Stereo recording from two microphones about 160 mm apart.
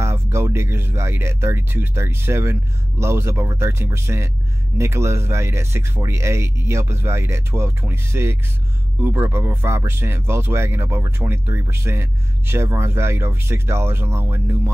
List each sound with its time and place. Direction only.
0.0 s speech: 15° right (ahead or behind)